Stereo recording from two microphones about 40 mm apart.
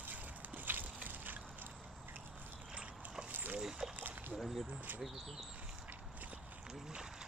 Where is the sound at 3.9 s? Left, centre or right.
Right.